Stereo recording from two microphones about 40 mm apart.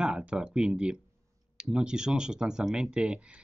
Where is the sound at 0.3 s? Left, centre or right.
Right.